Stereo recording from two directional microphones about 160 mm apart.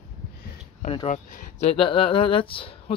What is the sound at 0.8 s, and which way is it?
Speech, 40° left (ahead or behind).